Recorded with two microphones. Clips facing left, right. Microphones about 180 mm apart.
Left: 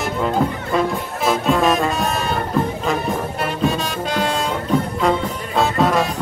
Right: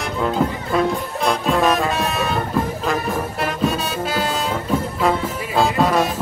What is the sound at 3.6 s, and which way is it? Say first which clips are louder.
Music: left 1 dB; centre (ahead or behind).